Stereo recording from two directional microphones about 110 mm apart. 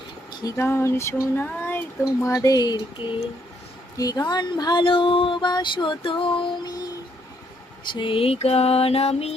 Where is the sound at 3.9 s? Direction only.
35° left (ahead or behind); by 6.7 s 50° left (ahead or behind).